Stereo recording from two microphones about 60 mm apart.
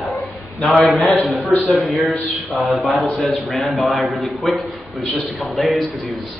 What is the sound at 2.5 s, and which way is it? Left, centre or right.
Speech, centre.